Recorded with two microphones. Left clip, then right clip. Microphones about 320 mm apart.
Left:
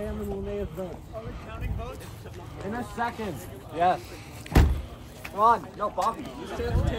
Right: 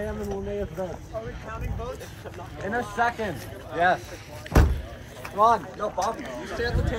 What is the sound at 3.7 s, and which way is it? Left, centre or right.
Speech, right.